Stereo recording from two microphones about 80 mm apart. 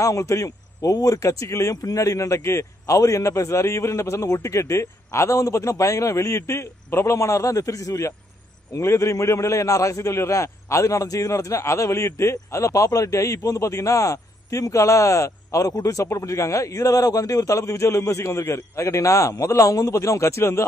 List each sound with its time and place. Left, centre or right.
0.0 s a man's voice: left